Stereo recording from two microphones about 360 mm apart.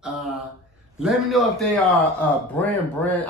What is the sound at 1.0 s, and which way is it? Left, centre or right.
A man's voice, centre.